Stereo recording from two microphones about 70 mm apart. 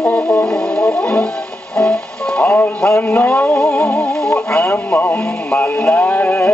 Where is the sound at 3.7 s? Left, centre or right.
Centre.